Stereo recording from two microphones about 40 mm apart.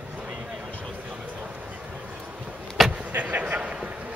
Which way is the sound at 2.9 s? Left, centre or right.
Right.